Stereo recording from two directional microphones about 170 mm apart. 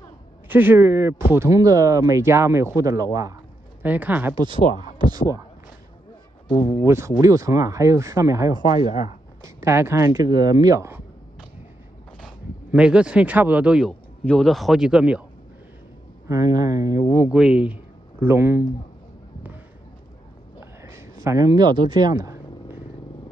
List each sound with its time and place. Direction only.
0.5 s speech: 10° right (ahead or behind)
3.8 s speech: 10° right (ahead or behind)
4.5 s speech: 50° left (ahead or behind)
5.1 s speech: 20° right (ahead or behind)
6.8 s speech: 15° right (ahead or behind)
12.7 s speech: 5° right (ahead or behind)
16.3 s speech: 20° right (ahead or behind)
17.3 s speech: 5° right (ahead or behind)
20.8 s purr: 15° right (ahead or behind)